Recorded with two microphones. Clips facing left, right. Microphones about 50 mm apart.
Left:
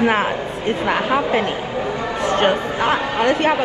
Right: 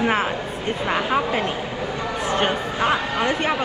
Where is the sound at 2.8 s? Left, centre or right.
Left.